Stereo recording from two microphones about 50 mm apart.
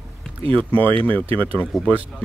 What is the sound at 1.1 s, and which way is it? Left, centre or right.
Speech, left.